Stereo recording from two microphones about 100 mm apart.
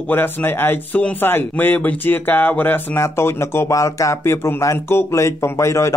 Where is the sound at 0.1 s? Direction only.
20° left (ahead or behind).